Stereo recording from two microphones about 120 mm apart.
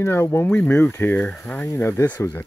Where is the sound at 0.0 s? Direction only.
20° left (ahead or behind).